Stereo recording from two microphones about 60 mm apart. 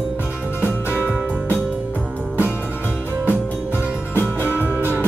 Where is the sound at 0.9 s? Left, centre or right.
Left.